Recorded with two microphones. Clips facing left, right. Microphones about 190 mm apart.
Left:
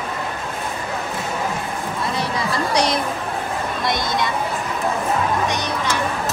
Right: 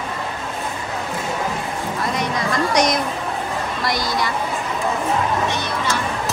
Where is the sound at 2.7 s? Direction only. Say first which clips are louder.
Even; 30° left (ahead or behind).